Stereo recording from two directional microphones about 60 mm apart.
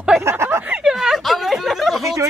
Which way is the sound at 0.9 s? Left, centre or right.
Centre.